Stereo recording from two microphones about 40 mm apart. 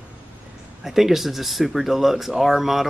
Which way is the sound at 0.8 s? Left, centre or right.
Centre.